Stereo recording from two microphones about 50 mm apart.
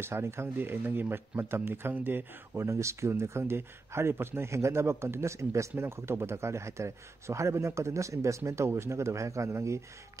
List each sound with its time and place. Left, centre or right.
0.0 s speech: right
2.5 s speech: right
8.7 s speech: right